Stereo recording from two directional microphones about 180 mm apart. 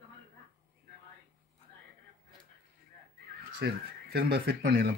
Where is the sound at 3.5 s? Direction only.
60° right (ahead or behind).